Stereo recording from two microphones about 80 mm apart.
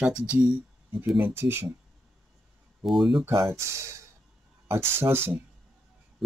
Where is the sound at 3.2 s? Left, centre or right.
Right.